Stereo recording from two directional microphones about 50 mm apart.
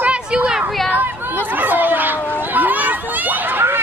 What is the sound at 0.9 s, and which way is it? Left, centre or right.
Chatter, right.